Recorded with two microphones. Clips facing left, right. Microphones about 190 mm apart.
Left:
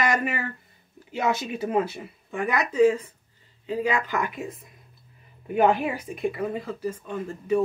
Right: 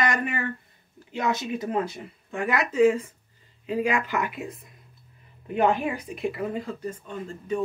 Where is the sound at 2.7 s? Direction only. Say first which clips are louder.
Left 1 dB; 10° right (ahead or behind); by 7.6 s 10° left (ahead or behind).